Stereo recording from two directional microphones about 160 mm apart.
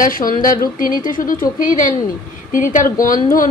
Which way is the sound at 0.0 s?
60° left (ahead or behind).